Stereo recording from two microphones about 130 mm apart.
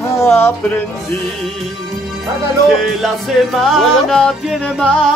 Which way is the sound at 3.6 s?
Centre (ahead or behind).